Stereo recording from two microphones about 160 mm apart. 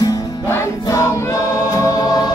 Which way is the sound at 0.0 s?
20° left (ahead or behind).